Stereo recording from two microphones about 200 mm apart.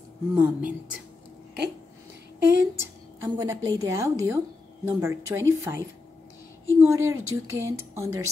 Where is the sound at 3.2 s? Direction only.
15° right (ahead or behind).